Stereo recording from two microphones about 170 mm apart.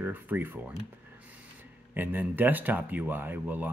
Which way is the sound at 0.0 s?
10° right (ahead or behind).